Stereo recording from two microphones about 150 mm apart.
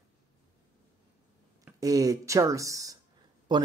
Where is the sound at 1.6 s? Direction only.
25° right (ahead or behind).